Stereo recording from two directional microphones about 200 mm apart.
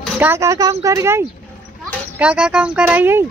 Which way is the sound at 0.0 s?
10° right (ahead or behind).